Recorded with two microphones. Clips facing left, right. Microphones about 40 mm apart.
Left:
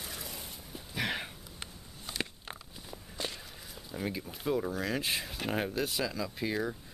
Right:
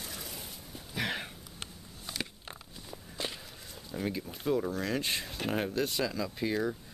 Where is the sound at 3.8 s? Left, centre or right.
Centre.